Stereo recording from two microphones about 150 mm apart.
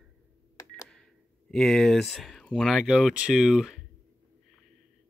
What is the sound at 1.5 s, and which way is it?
Speech, centre (ahead or behind).